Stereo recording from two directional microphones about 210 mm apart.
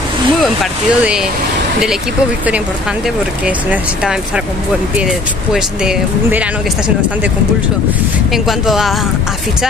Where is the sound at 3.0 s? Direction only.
5° right (ahead or behind).